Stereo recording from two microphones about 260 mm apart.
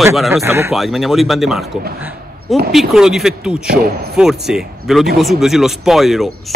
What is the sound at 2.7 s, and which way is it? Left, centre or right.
Speech, centre.